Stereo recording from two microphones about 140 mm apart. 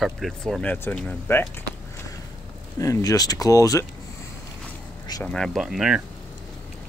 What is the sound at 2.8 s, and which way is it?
Speech, 25° left (ahead or behind).